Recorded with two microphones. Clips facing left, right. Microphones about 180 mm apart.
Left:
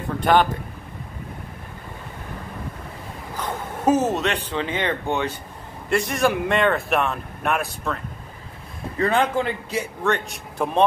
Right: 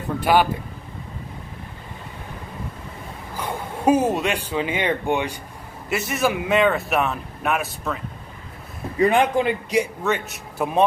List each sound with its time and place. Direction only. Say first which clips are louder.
0.2 s a man's voice: even; 10° right (ahead or behind)
3.3 s speech: right 1 dB; 10° right (ahead or behind)
8.9 s a man's voice: right 3 dB; 15° right (ahead or behind)
10.0 s speech: left 1 dB; 5° right (ahead or behind)